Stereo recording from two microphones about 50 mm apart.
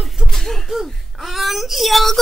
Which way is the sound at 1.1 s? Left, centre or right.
Centre.